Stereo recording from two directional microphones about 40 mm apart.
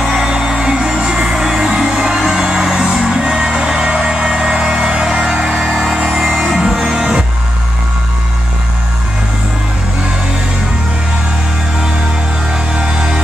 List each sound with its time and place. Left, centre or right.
0.0 s music: centre